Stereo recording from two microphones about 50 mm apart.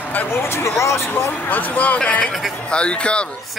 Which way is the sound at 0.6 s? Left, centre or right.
Left.